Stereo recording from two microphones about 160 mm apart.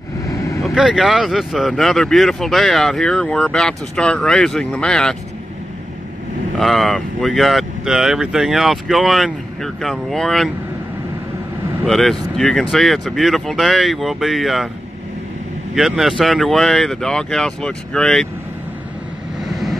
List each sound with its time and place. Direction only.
0.3 s vehicle: 20° left (ahead or behind)
0.6 s speech: centre (ahead or behind)
6.6 s speech: centre (ahead or behind)
11.8 s speech: centre (ahead or behind)
15.7 s speech: centre (ahead or behind)